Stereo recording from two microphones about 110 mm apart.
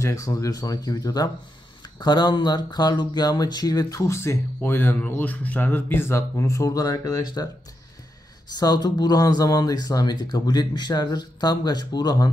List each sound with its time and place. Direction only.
0.0 s speech: 30° left (ahead or behind)
8.5 s speech: 40° left (ahead or behind)